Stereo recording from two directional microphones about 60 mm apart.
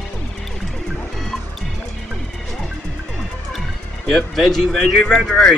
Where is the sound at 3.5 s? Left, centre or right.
Centre.